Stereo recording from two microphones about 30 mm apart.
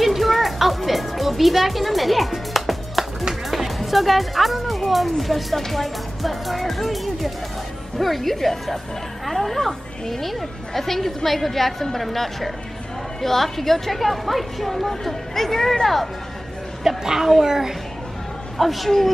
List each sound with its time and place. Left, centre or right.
0.0 s music: centre
3.4 s a woman's voice: centre
16.8 s a woman's voice: centre
18.6 s speech: centre